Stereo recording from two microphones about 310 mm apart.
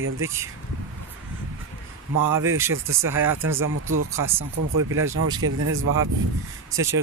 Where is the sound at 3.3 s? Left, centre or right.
Right.